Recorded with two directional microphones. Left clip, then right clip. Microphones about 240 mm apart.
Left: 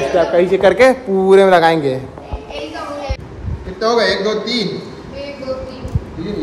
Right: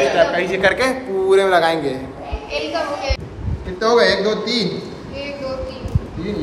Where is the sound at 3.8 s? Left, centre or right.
Centre.